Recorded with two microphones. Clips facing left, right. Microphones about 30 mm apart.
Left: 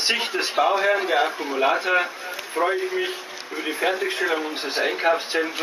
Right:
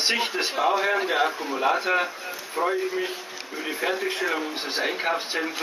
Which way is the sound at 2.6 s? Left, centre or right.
Left.